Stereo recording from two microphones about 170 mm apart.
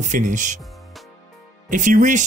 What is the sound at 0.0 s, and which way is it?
Speech, 45° right (ahead or behind).